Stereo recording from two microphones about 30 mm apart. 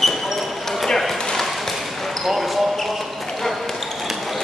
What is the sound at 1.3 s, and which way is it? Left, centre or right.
Basketball bounce, centre.